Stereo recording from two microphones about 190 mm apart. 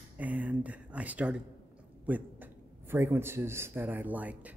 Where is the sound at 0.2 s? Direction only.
10° right (ahead or behind).